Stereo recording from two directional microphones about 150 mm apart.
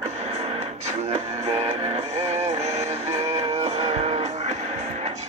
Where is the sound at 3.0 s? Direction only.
45° right (ahead or behind).